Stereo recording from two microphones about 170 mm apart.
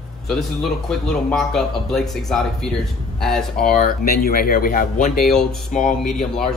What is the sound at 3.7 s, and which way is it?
Speech, 60° left (ahead or behind).